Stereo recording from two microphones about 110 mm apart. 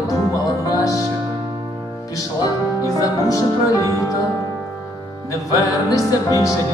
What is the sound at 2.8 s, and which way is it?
Music, 30° left (ahead or behind).